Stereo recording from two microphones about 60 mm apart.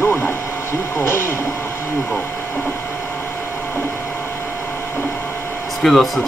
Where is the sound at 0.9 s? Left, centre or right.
Left.